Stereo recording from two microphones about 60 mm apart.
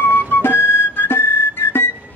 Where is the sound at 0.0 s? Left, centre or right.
Left.